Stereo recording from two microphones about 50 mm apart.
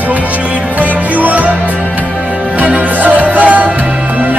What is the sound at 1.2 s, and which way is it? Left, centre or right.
Music, right.